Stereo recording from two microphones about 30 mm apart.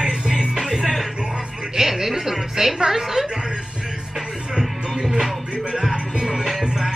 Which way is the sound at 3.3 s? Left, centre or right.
Right.